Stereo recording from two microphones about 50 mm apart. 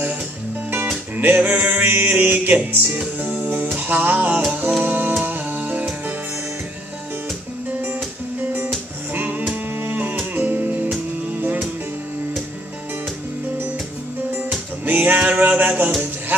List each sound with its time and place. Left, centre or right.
1.1 s music: right
9.1 s music: right
14.9 s music: right